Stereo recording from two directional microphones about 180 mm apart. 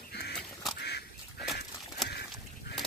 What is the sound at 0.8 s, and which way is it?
Duck, 65° left (ahead or behind).